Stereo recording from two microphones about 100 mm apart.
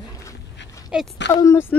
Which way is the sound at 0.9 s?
10° right (ahead or behind).